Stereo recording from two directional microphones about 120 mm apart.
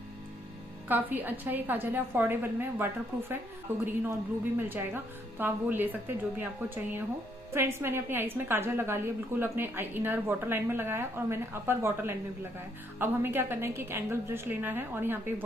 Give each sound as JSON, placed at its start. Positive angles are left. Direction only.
{"t": 0.8, "sound": "a woman's voice", "side_deg": -15}